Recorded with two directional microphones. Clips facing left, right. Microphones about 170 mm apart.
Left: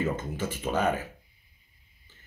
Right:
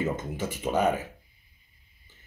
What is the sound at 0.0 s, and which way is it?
Speech, 15° right (ahead or behind).